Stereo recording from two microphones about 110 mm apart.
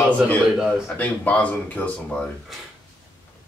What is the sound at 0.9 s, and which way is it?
Speech, 15° left (ahead or behind).